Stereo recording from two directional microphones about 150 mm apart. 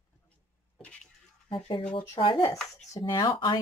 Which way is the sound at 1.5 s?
35° left (ahead or behind).